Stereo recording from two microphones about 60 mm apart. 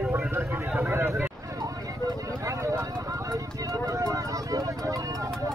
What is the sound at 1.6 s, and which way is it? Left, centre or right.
Vehicle, right.